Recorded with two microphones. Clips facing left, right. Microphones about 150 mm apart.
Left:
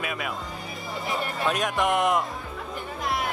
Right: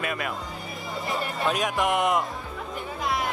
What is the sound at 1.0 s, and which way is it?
Speech, centre (ahead or behind).